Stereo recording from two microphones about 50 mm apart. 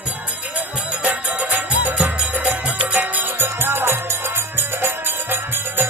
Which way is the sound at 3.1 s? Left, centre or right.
Right.